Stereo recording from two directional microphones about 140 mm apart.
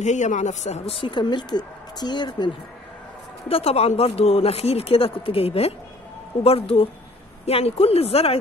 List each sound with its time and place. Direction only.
0.0 s speech: 60° left (ahead or behind); by 2.5 s 30° left (ahead or behind)
3.4 s speech: 45° left (ahead or behind)